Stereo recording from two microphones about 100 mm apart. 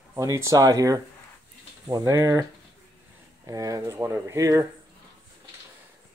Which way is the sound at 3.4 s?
35° right (ahead or behind).